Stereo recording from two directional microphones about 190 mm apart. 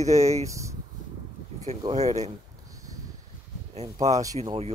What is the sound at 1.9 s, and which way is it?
Speech, 35° right (ahead or behind).